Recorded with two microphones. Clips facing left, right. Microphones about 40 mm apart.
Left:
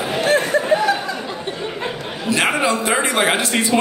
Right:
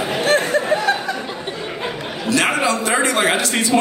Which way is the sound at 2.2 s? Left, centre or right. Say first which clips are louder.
Even; centre.